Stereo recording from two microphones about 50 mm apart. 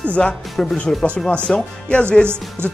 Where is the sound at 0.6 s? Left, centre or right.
Centre.